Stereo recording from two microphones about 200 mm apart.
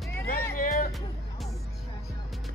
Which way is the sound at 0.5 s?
40° left (ahead or behind).